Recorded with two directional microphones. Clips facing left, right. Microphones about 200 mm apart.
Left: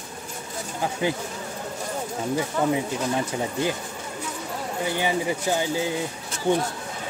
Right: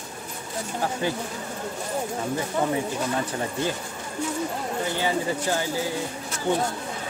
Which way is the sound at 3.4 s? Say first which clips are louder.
Left 2 dB; 15° left (ahead or behind).